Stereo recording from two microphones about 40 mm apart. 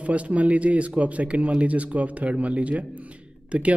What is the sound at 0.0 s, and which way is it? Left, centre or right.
A man's voice, right.